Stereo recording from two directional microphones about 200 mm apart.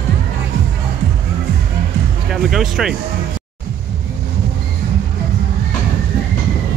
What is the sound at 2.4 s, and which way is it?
Speech, centre (ahead or behind).